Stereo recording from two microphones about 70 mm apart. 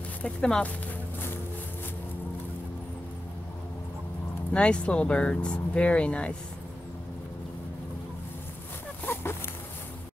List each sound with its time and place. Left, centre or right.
0.2 s speech: centre
4.6 s speech: centre
9.0 s a sound: left